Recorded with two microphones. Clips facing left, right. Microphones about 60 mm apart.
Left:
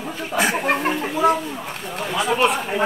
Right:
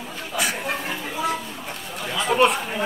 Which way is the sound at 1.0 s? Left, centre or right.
Left.